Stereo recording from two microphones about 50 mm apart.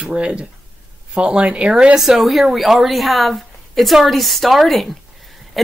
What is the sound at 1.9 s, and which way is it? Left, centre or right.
Speech, centre.